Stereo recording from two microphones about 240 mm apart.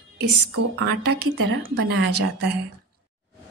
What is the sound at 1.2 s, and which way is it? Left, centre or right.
Speech, right.